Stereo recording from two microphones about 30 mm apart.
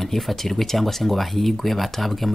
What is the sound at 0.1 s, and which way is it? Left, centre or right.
Speech, centre.